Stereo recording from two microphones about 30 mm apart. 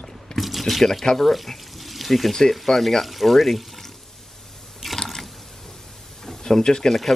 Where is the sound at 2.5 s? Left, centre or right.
Centre.